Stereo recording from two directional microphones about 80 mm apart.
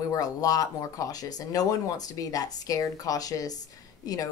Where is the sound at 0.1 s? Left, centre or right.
Left.